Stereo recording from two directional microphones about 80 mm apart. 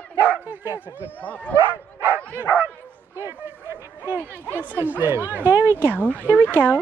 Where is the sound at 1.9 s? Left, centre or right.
Right.